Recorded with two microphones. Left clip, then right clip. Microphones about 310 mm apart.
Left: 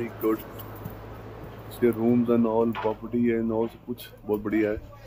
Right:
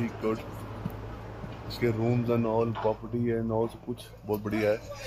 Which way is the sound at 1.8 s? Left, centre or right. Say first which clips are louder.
Left 6 dB; right.